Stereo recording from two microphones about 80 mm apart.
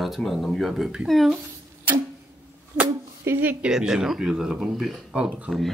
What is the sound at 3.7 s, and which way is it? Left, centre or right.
Speech, centre.